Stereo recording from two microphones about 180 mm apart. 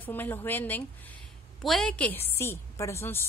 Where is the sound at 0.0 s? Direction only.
10° left (ahead or behind).